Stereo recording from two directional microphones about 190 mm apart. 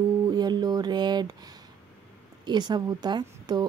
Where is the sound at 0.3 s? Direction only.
20° right (ahead or behind).